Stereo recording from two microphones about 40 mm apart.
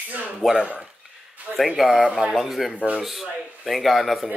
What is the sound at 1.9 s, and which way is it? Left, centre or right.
Speech, centre.